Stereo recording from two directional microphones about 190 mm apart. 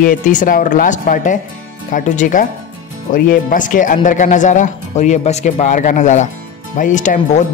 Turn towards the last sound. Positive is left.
turn(degrees=40)  # may be behind; listen again after turning